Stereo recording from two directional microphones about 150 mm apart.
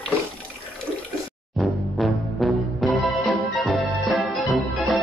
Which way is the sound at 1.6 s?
Centre (ahead or behind).